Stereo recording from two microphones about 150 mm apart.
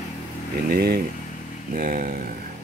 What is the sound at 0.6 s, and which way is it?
Speech, 90° right.